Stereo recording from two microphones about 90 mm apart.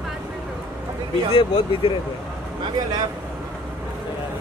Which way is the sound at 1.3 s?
70° left (ahead or behind).